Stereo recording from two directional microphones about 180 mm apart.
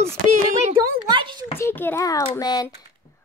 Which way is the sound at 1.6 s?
10° left (ahead or behind).